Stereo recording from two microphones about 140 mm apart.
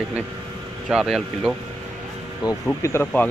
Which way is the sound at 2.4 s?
20° left (ahead or behind).